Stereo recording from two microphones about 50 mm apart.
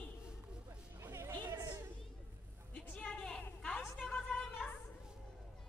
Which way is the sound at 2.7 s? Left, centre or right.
Left.